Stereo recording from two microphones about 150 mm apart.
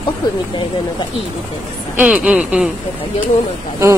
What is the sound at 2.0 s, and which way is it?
Speech, 10° right (ahead or behind).